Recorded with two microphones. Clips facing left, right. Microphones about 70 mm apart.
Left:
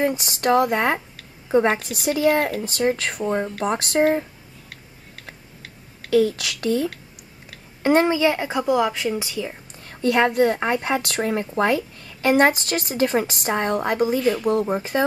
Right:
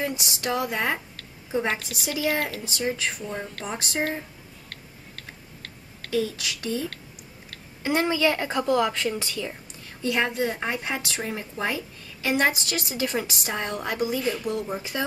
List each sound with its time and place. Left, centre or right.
0.0 s speech: left
1.7 s speech: centre
2.6 s speech: left
4.6 s a sound: centre
6.1 s speech: left
7.8 s a woman's voice: left
8.1 s a woman's voice: centre
9.8 s speech: left